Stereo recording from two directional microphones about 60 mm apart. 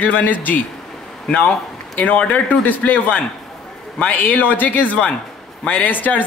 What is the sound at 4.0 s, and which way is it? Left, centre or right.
Speech, left.